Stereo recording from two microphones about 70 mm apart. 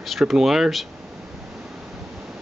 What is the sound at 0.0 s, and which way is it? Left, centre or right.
Speech, centre.